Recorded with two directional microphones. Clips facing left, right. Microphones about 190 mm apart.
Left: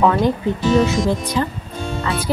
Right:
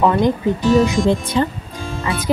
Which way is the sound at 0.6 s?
Centre (ahead or behind).